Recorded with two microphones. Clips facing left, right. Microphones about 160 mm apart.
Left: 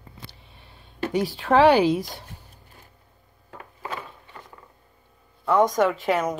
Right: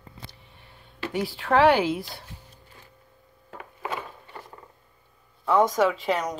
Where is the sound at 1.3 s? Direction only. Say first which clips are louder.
Left 2 dB; 15° left (ahead or behind).